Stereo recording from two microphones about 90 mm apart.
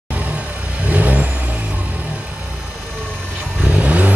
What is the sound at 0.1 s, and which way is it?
Vehicle, 15° right (ahead or behind).